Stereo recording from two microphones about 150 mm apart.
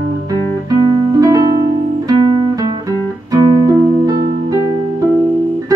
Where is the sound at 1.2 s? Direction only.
20° right (ahead or behind).